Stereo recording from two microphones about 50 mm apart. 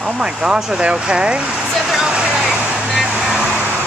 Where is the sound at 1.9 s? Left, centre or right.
Centre.